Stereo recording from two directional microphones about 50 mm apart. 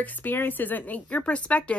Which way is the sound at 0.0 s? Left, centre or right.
Left.